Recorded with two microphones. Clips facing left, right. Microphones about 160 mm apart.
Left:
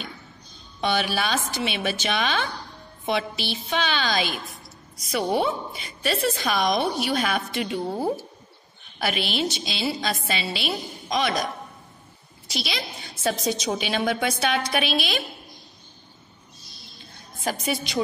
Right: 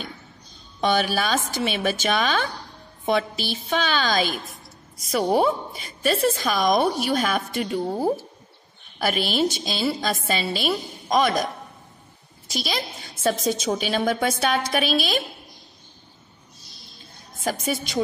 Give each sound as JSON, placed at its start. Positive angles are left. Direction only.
{"t": 0.7, "sound": "a woman's voice", "side_deg": -45}
{"t": 12.4, "sound": "a woman's voice", "side_deg": -45}
{"t": 17.4, "sound": "a woman's voice", "side_deg": -45}